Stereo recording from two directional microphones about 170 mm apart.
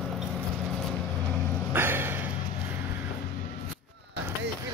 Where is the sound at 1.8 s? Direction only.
15° right (ahead or behind).